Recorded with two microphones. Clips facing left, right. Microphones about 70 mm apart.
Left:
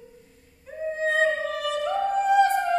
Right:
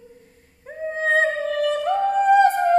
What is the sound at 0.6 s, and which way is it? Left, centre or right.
Music, right.